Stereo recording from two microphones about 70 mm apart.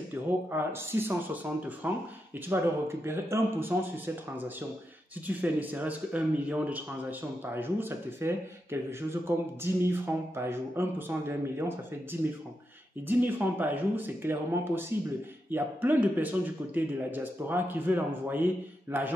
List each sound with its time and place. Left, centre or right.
0.1 s a man's voice: right
9.6 s a man's voice: right